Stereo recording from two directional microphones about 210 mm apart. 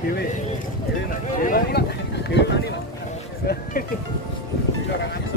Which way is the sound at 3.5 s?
45° left (ahead or behind).